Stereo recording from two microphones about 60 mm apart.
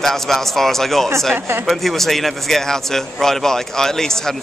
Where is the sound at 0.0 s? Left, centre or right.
Centre.